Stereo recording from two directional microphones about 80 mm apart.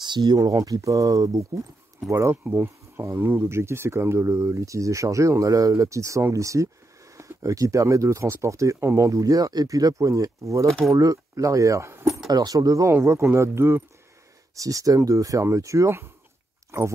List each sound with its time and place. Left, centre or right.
0.0 s speech: right
0.4 s speech: right
12.3 s speech: right
14.6 s speech: right